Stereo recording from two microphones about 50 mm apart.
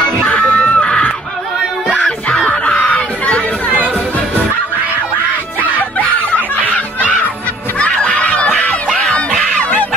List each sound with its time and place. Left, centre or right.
0.0 s screaming: left
2.0 s music: centre
6.6 s snicker: left
7.8 s music: centre
8.1 s music: left